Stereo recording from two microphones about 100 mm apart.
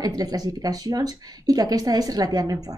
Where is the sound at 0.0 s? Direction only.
40° right (ahead or behind).